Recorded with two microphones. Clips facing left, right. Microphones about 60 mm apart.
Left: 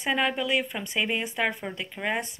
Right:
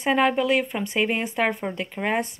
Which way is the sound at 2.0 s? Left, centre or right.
Centre.